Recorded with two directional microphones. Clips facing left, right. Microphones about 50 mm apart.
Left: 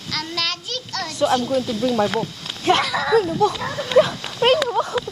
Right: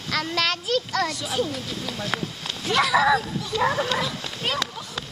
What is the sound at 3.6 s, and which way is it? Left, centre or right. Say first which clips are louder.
Speech: right 4 dB; centre.